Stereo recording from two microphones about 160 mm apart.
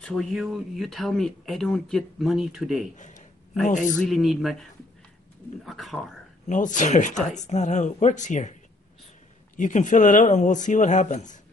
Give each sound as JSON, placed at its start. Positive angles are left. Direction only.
{"t": 0.0, "sound": "speech", "side_deg": 5}
{"t": 3.0, "sound": "a sound", "side_deg": 50}
{"t": 3.6, "sound": "speech", "side_deg": 50}
{"t": 4.1, "sound": "speech", "side_deg": 0}
{"t": 5.7, "sound": "speech", "side_deg": 0}
{"t": 6.5, "sound": "speech", "side_deg": 50}
{"t": 9.6, "sound": "speech", "side_deg": 50}